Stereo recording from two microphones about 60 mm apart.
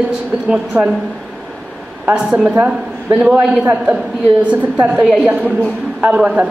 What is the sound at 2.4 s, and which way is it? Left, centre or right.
A man's voice, right.